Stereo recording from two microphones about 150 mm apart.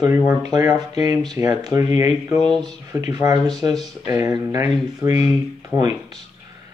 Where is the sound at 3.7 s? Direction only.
Centre (ahead or behind).